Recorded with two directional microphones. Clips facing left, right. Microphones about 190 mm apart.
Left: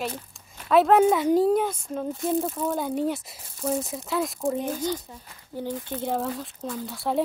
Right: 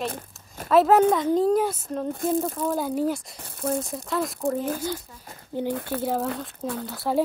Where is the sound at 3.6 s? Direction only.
Centre (ahead or behind).